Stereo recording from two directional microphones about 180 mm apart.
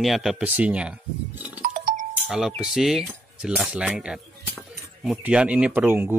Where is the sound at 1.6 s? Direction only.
50° right (ahead or behind).